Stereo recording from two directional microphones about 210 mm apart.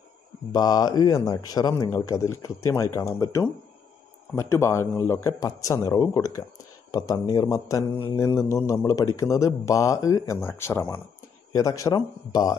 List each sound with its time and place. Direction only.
0.5 s speech: 20° left (ahead or behind)